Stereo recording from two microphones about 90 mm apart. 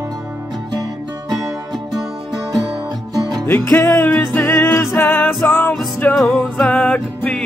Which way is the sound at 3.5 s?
25° left (ahead or behind).